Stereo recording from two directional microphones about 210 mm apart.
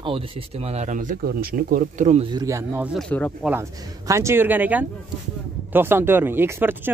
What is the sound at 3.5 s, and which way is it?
Speech, 15° right (ahead or behind).